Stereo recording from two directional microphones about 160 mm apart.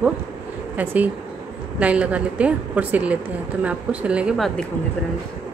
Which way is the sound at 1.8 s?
10° right (ahead or behind).